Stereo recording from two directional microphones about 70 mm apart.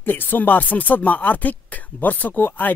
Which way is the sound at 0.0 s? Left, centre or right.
Left.